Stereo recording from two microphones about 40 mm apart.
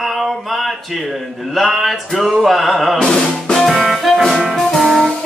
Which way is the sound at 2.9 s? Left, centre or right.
Centre.